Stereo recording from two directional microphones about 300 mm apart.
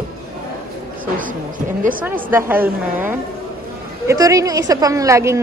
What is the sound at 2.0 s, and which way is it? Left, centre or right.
A woman's voice, centre.